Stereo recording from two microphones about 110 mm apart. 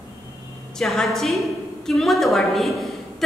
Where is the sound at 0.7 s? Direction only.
5° left (ahead or behind).